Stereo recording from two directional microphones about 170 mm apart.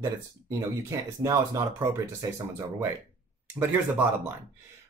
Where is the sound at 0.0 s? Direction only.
15° right (ahead or behind).